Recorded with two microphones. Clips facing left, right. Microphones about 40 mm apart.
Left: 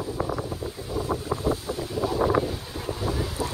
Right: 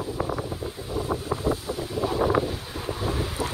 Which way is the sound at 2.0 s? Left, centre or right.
Right.